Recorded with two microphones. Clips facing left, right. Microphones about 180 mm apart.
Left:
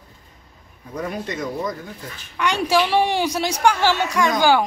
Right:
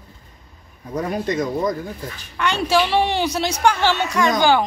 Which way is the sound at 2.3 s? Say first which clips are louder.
Even; 15° left (ahead or behind).